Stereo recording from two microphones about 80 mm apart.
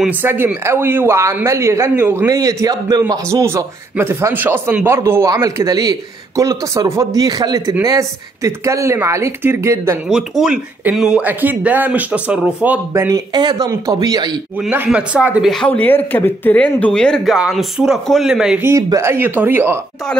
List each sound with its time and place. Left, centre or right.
0.2 s speech: right
2.2 s speech: right
3.3 s speech: right
5.3 s speech: right
10.0 s speech: centre
11.2 s speech: right
13.1 s speech: right
13.7 s speech: right
14.9 s speech: centre
15.6 s speech: centre
17.4 s speech: centre
18.3 s speech: centre
18.8 s speech: right
19.0 s speech: right